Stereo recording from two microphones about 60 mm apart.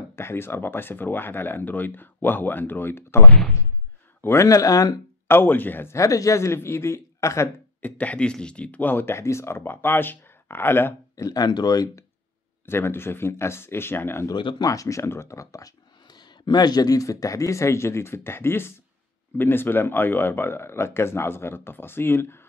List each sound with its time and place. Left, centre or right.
0.1 s speech: left
4.5 s speech: left
5.3 s speech: left
5.9 s speech: left
7.8 s speech: left
8.8 s speech: left
9.2 s speech: left
11.2 s speech: left
12.6 s speech: left
14.2 s speech: left
15.0 s speech: left
16.7 s speech: left